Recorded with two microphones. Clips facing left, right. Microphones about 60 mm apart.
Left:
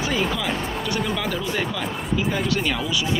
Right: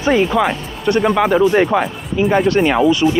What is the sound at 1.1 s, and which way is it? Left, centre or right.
Speech, right.